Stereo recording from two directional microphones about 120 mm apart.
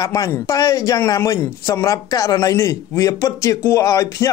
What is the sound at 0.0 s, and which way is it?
A man's voice, 30° left (ahead or behind).